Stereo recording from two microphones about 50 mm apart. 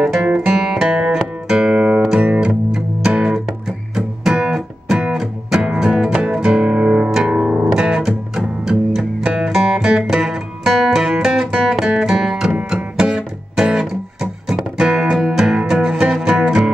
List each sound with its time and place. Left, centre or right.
0.6 s music: centre
3.3 s music: centre